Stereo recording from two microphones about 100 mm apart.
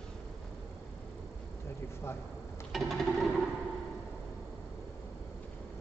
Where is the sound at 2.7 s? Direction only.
Centre (ahead or behind).